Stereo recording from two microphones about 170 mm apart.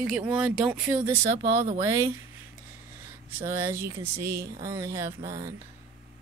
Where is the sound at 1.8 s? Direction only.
15° right (ahead or behind).